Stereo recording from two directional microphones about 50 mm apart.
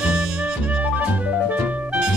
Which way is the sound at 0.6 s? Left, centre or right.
Right.